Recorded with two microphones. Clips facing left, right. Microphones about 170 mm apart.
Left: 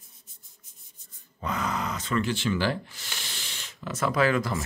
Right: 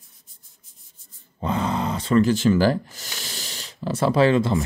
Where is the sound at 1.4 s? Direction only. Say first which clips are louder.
Right 6 dB; 30° right (ahead or behind).